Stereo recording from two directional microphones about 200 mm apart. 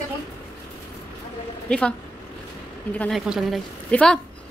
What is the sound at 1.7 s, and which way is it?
A woman's voice, 5° left (ahead or behind).